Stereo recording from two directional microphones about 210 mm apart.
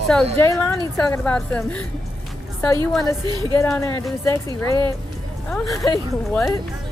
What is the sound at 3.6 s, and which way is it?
Speech, 10° left (ahead or behind).